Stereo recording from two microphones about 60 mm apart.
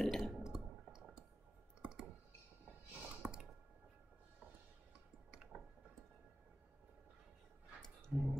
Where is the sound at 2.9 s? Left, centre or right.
Right.